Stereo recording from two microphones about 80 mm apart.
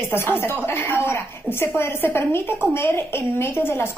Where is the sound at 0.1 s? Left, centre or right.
Left.